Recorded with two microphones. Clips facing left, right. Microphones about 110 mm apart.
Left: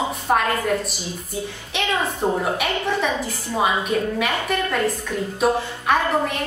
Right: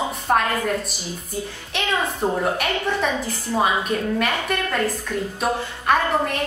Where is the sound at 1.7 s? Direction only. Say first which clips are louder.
Even; centre (ahead or behind).